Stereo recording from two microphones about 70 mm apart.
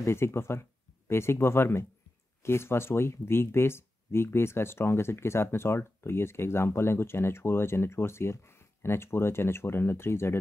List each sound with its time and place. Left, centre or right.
0.0 s speech: left